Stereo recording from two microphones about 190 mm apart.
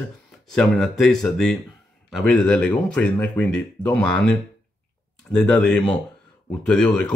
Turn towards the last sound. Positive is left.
turn(degrees=5)  # may be behind; listen again after turning